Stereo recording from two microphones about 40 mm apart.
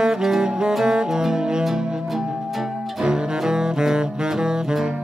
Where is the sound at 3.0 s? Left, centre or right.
Centre.